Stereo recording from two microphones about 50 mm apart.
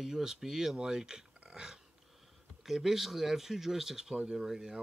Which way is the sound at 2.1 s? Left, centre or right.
Centre.